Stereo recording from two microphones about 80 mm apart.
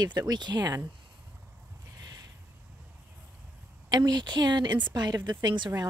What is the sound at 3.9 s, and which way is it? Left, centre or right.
Speech, right.